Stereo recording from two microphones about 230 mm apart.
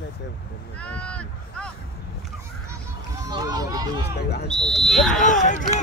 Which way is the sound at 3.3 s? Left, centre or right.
Centre.